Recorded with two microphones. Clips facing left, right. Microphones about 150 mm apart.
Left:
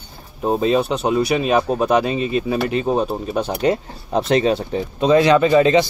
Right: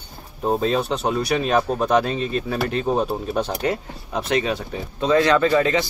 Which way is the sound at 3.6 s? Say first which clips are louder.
Left 5 dB; 30° left (ahead or behind).